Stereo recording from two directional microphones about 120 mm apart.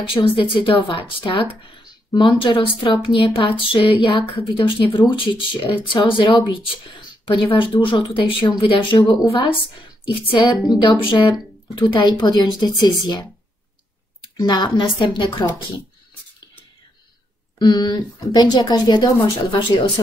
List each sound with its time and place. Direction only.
0.1 s speech: 45° left (ahead or behind)
4.5 s speech: 30° left (ahead or behind)
5.2 s speech: 45° left (ahead or behind)
9.2 s a woman's voice: 30° left (ahead or behind)
10.7 s speech: 40° left (ahead or behind)
14.4 s speech: 40° left (ahead or behind)
17.6 s speech: 40° left (ahead or behind)